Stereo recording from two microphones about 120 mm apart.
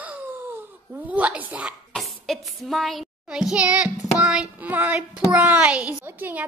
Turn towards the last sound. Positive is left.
turn(degrees=-15)  # may be behind; listen again after turning